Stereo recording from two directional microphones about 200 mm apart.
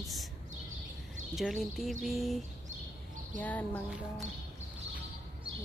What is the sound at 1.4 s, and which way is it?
Speech, centre (ahead or behind).